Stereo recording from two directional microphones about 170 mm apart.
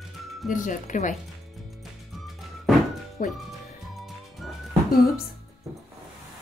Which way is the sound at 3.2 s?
55° left (ahead or behind).